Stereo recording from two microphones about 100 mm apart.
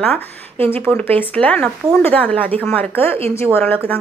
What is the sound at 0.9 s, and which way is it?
Speech, 15° left (ahead or behind).